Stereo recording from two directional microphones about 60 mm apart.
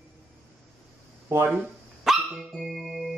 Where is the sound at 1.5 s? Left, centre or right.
Centre.